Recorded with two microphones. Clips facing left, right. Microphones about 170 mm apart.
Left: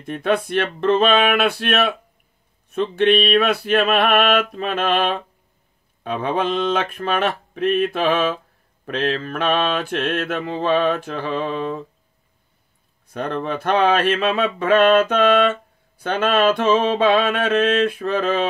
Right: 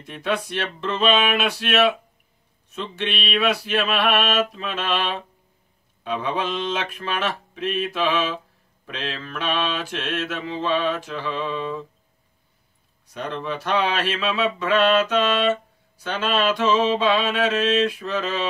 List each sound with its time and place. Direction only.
0.0 s mantra: 55° left (ahead or behind)
13.0 s mantra: 55° left (ahead or behind)